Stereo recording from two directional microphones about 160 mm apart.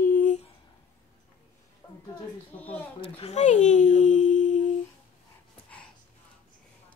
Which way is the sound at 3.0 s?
40° left (ahead or behind).